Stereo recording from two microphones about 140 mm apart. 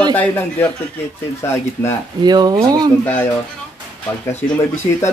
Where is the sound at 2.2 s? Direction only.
30° right (ahead or behind).